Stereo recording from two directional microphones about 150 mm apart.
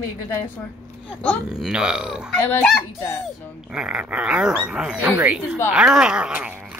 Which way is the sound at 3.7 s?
5° right (ahead or behind).